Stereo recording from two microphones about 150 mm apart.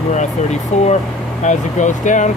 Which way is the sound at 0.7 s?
50° left (ahead or behind).